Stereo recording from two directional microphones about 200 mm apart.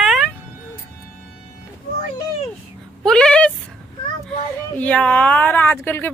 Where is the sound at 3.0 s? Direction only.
5° left (ahead or behind).